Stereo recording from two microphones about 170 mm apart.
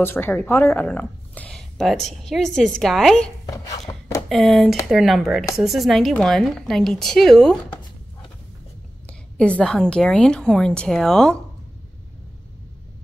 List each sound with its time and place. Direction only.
0.0 s a woman's voice: 10° left (ahead or behind)
3.9 s a sound: 20° left (ahead or behind)
4.3 s a woman's voice: centre (ahead or behind)
9.0 s a woman's voice: 5° left (ahead or behind)